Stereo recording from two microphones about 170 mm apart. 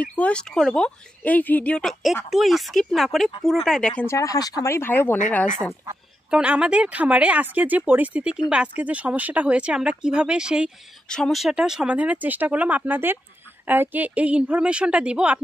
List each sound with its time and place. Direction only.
0.0 s speech: 10° left (ahead or behind)
4.0 s speech: 15° left (ahead or behind)
6.3 s speech: 5° right (ahead or behind)